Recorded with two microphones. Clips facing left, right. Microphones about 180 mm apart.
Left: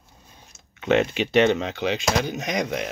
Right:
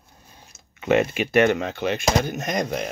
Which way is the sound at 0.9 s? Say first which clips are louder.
Right 1 dB; 10° right (ahead or behind).